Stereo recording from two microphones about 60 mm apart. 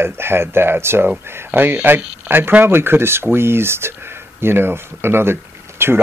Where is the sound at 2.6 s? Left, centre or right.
Right.